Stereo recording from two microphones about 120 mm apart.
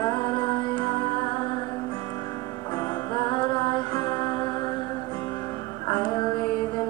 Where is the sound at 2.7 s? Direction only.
35° left (ahead or behind).